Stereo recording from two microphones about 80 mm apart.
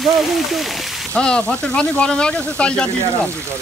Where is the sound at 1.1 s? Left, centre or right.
Centre.